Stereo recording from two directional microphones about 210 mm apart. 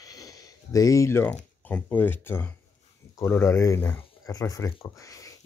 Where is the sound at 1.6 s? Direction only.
10° left (ahead or behind).